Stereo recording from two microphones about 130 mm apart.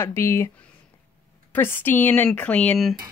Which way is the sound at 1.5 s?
15° left (ahead or behind).